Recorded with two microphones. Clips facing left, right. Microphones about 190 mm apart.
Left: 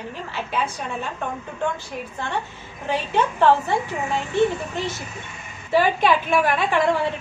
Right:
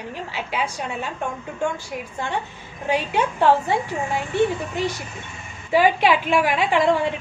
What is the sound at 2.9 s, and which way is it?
A woman's voice, 10° right (ahead or behind).